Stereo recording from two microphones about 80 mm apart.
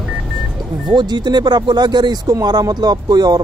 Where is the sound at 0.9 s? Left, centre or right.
Right.